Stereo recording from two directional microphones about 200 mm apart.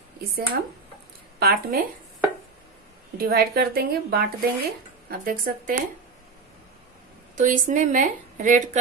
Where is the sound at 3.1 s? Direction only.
50° right (ahead or behind).